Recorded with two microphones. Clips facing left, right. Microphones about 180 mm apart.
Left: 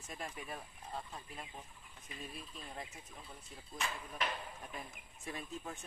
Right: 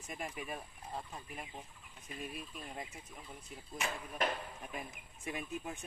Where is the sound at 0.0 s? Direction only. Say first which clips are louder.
Right 3 dB; 10° right (ahead or behind).